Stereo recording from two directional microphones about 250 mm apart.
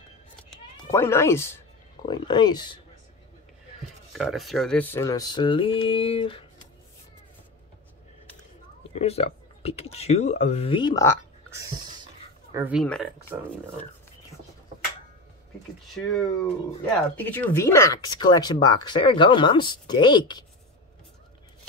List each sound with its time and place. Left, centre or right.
0.5 s cat: centre
2.0 s speech: centre
4.1 s speech: centre; by 6.4 s left
8.9 s speech: left
12.5 s speech: centre
16.0 s speech: centre